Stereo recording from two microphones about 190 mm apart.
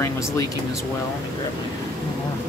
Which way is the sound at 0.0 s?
15° left (ahead or behind).